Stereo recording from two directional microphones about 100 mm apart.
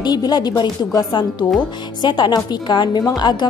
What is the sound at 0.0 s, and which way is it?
A woman's voice, 40° left (ahead or behind).